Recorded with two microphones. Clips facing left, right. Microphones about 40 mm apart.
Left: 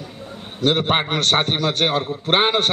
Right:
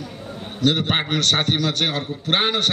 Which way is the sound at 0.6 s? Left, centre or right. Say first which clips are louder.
Left 2 dB; left.